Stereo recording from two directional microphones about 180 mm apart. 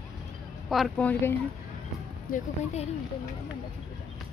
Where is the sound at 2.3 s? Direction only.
50° left (ahead or behind).